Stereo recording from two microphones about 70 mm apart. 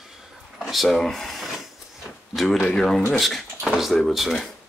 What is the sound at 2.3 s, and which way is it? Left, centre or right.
Speech, centre.